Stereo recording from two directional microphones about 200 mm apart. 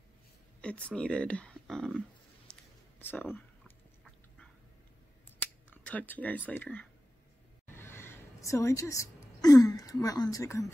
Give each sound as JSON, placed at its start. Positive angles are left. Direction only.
{"t": 0.6, "sound": "speech", "side_deg": 5}
{"t": 2.5, "sound": "a sound", "side_deg": 5}
{"t": 3.0, "sound": "speech", "side_deg": 10}
{"t": 3.3, "sound": "chewing", "side_deg": 5}
{"t": 5.7, "sound": "speech", "side_deg": 10}